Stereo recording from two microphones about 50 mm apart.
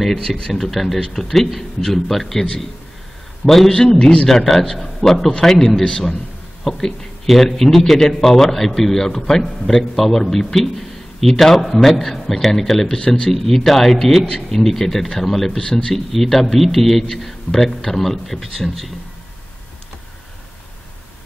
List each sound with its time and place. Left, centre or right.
0.0 s a man's voice: centre
3.4 s a man's voice: centre
4.3 s a man's voice: centre
13.3 s a man's voice: centre
15.6 s a man's voice: centre
15.9 s a man's voice: centre